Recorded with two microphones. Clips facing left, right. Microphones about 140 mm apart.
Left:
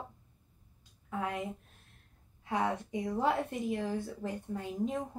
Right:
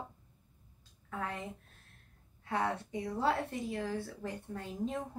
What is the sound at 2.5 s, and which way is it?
A woman's voice, 15° left (ahead or behind).